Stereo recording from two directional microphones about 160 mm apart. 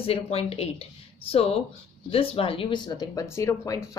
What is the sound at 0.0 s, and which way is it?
A woman's voice, 35° left (ahead or behind).